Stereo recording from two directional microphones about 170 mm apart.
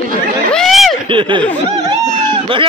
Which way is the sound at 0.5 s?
Centre (ahead or behind).